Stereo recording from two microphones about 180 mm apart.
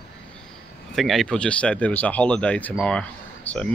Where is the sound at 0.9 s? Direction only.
Centre (ahead or behind).